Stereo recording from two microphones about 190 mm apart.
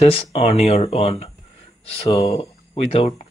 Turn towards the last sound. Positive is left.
turn(degrees=30)  # may be behind; listen again after turning